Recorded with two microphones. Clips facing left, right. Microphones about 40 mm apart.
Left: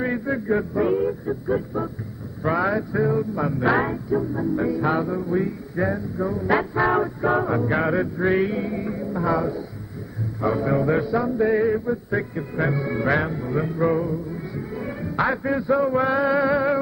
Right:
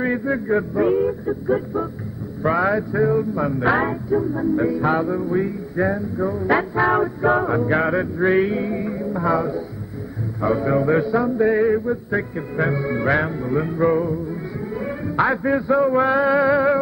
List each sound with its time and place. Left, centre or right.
0.0 s music: centre